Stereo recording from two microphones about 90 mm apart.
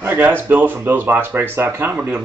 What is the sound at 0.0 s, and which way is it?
Speech, 25° right (ahead or behind).